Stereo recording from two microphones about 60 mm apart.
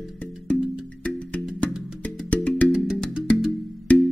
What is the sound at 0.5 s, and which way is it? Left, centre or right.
Music, centre.